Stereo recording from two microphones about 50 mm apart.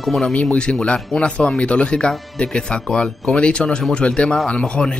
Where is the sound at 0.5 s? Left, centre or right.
Centre.